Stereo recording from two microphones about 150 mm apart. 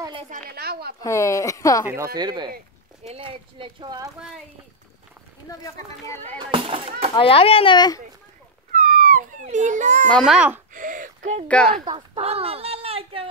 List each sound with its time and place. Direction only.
0.0 s a sound: 35° right (ahead or behind)
0.5 s speech: 90° right
1.0 s speech: 20° left (ahead or behind)
2.1 s speech: 30° right (ahead or behind)
3.0 s speech: 40° right (ahead or behind)
6.2 s speech: 35° right (ahead or behind)
7.2 s speech: 40° left (ahead or behind)
8.7 s dog: 60° right (ahead or behind)
9.1 s a child's voice: 55° right (ahead or behind)
10.0 s a child's voice: centre (ahead or behind)
10.7 s speech: 60° right (ahead or behind)
11.4 s speech: 5° left (ahead or behind)
11.8 s speech: 30° right (ahead or behind)
12.3 s speech: 40° right (ahead or behind)